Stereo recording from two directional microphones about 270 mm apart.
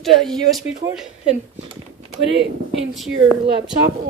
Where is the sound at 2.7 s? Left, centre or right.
Centre.